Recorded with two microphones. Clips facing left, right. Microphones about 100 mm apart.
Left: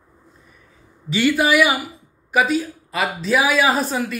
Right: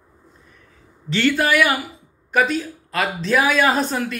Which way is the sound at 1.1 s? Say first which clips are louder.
Left 1 dB; 10° left (ahead or behind).